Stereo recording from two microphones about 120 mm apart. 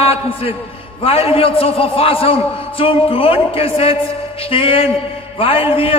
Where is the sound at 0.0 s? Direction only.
55° left (ahead or behind).